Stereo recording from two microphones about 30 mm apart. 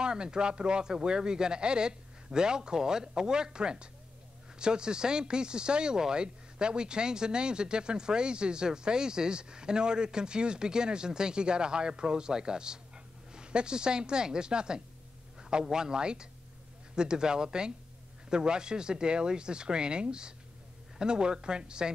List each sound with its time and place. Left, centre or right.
0.0 s speech: right